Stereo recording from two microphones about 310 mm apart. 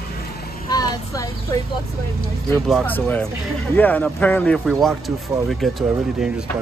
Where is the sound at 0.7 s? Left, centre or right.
Centre.